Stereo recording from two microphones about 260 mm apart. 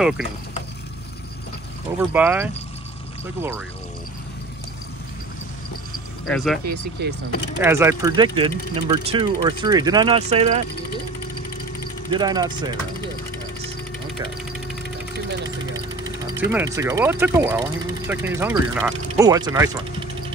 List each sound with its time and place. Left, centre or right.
2.0 s speech: centre
6.2 s speech: centre
6.6 s speech: right
7.6 s speech: centre
12.1 s speech: centre
16.3 s speech: centre